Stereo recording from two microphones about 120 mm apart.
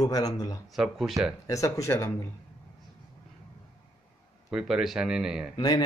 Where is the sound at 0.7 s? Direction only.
Centre (ahead or behind).